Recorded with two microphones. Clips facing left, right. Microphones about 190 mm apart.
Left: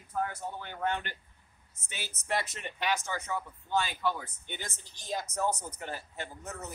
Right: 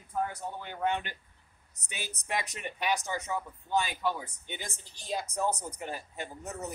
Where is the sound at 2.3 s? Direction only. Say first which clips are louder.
Even; 15° right (ahead or behind).